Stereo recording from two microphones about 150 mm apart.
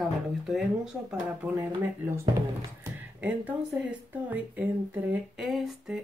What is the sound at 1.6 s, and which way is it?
Speech, 20° right (ahead or behind).